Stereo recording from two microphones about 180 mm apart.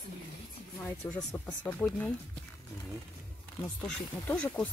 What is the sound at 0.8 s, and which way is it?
Speech, 10° left (ahead or behind).